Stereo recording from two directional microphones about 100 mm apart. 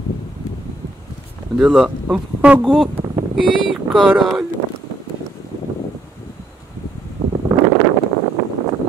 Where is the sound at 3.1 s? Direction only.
55° right (ahead or behind).